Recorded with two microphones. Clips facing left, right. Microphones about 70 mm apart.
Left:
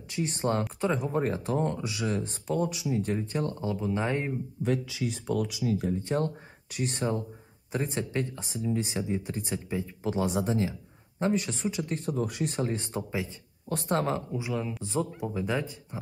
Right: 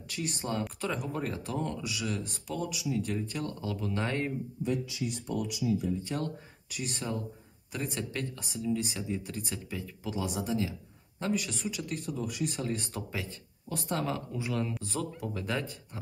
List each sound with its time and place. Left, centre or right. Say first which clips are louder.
0.1 s speech: left 6 dB; left
0.7 s speech: left 6 dB; left
3.8 s speech: left 2 dB; centre
5.2 s speech: left 7 dB; left
5.6 s speech: left 1 dB; left
6.0 s speech: left 6 dB; left
10.0 s speech: left 5 dB; left
13.7 s speech: left 5 dB; left
14.3 s a man's voice: left 1 dB; centre
14.8 s speech: left 5 dB; left